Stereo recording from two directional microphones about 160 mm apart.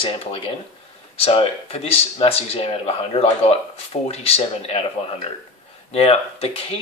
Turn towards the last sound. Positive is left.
turn(degrees=40)  # may be behind; listen again after turning